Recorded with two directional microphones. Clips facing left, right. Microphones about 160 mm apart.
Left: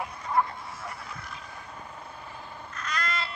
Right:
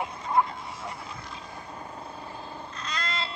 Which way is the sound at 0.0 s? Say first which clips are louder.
Right 2 dB; 20° right (ahead or behind).